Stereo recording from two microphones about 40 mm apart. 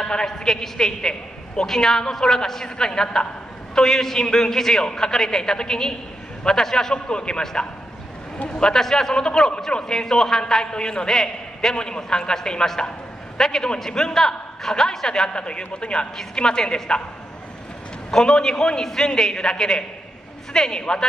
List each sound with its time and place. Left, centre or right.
0.0 s a man's voice: centre
3.7 s a man's voice: centre
8.7 s a man's voice: centre
11.1 s a man's voice: centre
11.7 s a man's voice: left
15.2 s a man's voice: left
18.1 s a man's voice: centre